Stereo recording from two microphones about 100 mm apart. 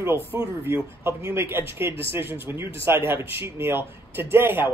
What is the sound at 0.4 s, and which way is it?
Speech, 25° right (ahead or behind).